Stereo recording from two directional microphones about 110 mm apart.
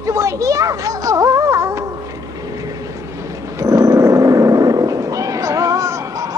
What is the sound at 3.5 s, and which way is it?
Cat, 30° right (ahead or behind).